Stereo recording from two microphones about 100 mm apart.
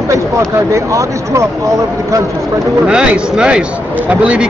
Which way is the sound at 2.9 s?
10° right (ahead or behind).